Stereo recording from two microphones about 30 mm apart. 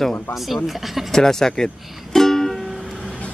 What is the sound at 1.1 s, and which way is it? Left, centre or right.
Speech, centre.